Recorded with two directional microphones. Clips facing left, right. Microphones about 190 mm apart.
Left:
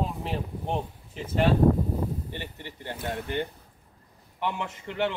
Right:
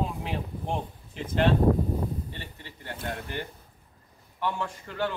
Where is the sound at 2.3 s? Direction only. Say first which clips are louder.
Left 5 dB; 20° left (ahead or behind).